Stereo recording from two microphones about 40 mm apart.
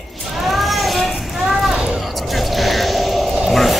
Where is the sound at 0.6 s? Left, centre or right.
Centre.